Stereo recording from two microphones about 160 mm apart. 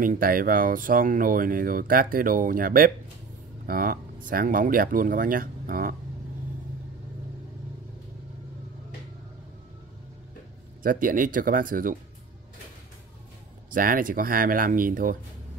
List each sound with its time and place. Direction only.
0.0 s speech: 60° right (ahead or behind)
10.8 s speech: 60° right (ahead or behind)
13.7 s speech: 60° right (ahead or behind)